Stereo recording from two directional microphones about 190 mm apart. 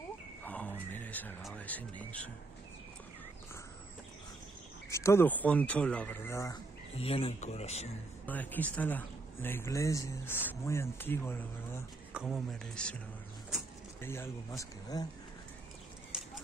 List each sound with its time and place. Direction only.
0.4 s speech: 10° left (ahead or behind)
4.8 s speech: 15° left (ahead or behind)
7.0 s speech: 30° left (ahead or behind)
8.3 s speech: 10° left (ahead or behind)
12.1 s a man's voice: 5° right (ahead or behind)
14.0 s speech: 15° left (ahead or behind)